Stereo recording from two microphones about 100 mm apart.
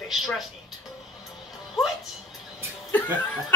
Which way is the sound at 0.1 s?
Centre (ahead or behind).